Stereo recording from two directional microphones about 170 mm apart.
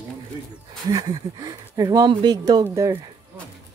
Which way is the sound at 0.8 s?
20° right (ahead or behind).